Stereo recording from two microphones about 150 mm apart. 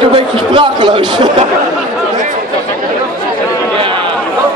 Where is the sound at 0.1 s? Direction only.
30° right (ahead or behind).